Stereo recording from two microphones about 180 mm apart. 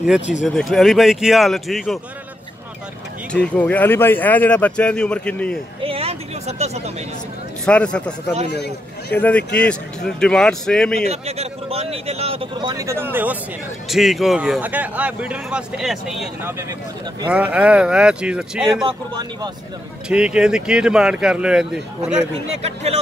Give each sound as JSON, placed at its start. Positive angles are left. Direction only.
{"t": 0.6, "sound": "speech", "side_deg": 0}
{"t": 3.3, "sound": "speech", "side_deg": 5}
{"t": 5.8, "sound": "a sound", "side_deg": -30}
{"t": 7.6, "sound": "speech", "side_deg": 5}
{"t": 8.5, "sound": "speech", "side_deg": 65}
{"t": 9.6, "sound": "speech", "side_deg": 5}
{"t": 11.1, "sound": "speech", "side_deg": -35}
{"t": 16.4, "sound": "speech", "side_deg": -15}
{"t": 18.9, "sound": "speech", "side_deg": -25}
{"t": 20.1, "sound": "speech", "side_deg": -5}
{"t": 22.5, "sound": "speech", "side_deg": -35}